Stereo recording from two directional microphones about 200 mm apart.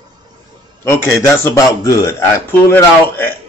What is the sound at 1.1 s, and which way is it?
A man's voice, 15° left (ahead or behind).